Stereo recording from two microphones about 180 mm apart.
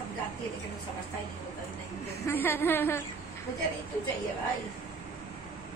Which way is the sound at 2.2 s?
10° left (ahead or behind).